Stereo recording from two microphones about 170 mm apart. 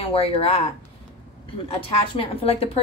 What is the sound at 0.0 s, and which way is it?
Speech, 35° left (ahead or behind).